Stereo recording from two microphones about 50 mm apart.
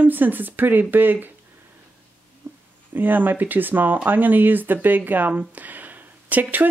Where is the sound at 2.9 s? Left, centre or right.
Right.